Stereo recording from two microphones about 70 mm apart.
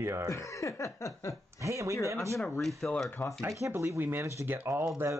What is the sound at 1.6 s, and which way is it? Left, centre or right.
Speech, right.